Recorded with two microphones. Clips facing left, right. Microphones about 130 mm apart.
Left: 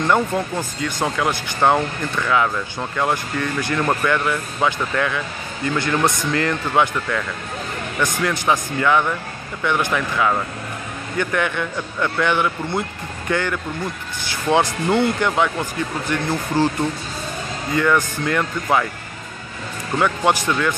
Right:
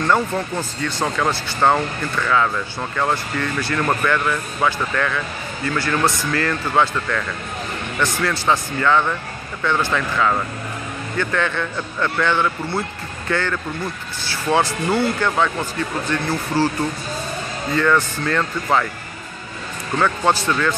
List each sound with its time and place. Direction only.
0.0 s speech: 15° left (ahead or behind)
17.7 s speech: 15° left (ahead or behind)
20.0 s speech: 15° left (ahead or behind)